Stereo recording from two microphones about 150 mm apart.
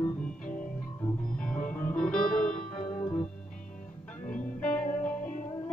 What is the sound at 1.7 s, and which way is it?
Music, 10° left (ahead or behind).